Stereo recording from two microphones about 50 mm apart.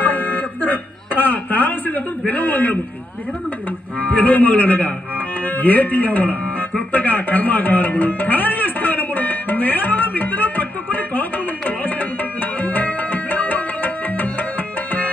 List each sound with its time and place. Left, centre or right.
0.0 s a sound: left
4.0 s a man's voice: left
6.9 s music: left